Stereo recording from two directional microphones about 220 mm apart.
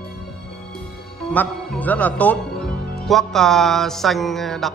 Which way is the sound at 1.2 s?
5° left (ahead or behind).